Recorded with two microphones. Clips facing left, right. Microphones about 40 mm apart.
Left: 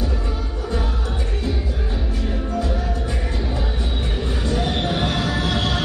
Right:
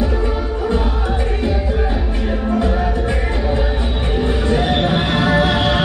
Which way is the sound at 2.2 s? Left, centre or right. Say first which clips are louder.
Right 7 dB; right.